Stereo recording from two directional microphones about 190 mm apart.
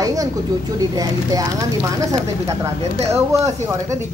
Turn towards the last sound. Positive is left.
turn(degrees=-15)  # may be behind; listen again after turning